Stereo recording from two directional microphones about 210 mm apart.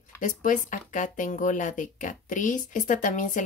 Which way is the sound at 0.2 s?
40° left (ahead or behind).